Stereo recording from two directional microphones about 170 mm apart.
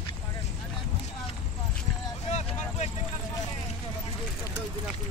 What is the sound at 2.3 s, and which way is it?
Vehicle, 40° left (ahead or behind).